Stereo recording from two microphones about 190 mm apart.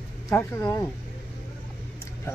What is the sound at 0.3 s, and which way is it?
Speech, 15° left (ahead or behind).